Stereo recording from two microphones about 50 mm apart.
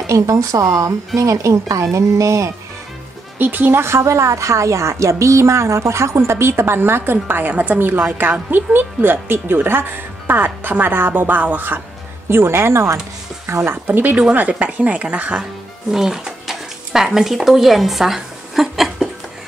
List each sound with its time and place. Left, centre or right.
0.0 s speech: right
3.3 s speech: right
3.8 s a woman's voice: right
12.3 s speech: right
14.6 s speech: right
15.9 s speech: centre